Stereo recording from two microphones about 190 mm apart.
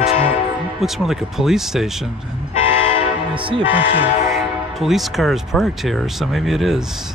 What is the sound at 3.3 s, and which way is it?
Speech, 25° right (ahead or behind).